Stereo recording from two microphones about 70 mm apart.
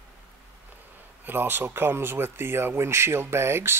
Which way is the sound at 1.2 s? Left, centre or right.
Right.